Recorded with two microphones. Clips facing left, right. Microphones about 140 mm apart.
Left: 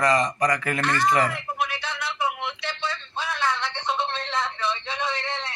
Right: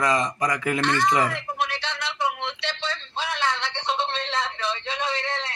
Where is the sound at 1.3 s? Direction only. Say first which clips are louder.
Even; 85° right.